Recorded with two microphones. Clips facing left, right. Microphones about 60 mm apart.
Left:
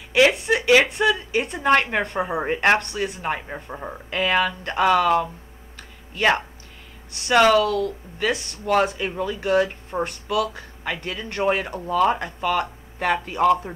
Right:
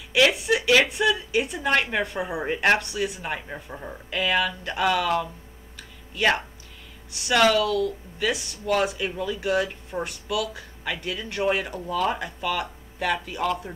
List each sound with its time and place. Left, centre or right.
0.1 s a sound: left
0.8 s speech: left
7.1 s speech: left
7.3 s speech: left
8.6 s speech: left